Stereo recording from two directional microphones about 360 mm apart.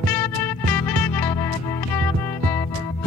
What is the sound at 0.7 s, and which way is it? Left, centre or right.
Music, centre.